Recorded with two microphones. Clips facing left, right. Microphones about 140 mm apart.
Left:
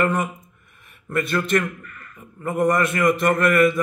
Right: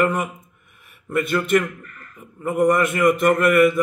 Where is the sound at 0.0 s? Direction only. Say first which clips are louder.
Right 1 dB; 10° right (ahead or behind).